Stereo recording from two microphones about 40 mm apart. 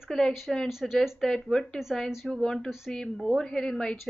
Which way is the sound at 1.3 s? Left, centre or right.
Centre.